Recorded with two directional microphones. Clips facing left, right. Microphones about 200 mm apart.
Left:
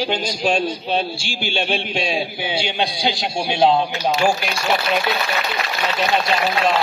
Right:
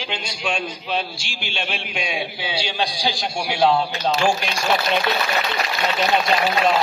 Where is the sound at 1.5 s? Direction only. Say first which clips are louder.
Left 6 dB; 30° left (ahead or behind).